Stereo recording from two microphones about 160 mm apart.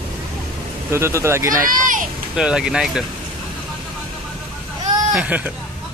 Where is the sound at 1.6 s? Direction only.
55° right (ahead or behind).